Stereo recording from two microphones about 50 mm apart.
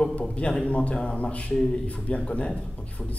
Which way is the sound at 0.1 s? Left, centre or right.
Left.